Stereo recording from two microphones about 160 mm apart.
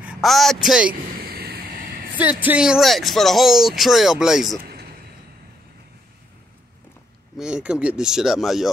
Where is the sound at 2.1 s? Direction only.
10° right (ahead or behind).